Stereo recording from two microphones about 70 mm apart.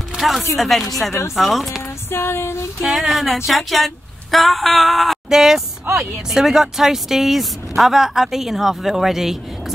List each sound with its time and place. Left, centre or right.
0.1 s speech: centre
2.0 s music: left
2.8 s speech: centre